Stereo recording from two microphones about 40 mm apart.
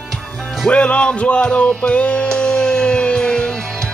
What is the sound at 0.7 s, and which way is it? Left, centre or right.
Music, left.